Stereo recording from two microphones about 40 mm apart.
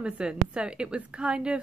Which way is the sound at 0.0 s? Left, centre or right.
Right.